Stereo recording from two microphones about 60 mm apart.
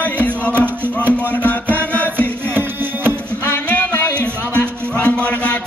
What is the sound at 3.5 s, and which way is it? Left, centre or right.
Music, left.